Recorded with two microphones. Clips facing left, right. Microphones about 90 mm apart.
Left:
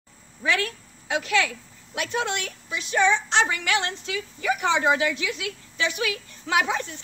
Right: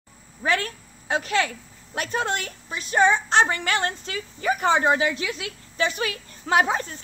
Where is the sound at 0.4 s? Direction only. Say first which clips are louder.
Right 1 dB; 40° right (ahead or behind).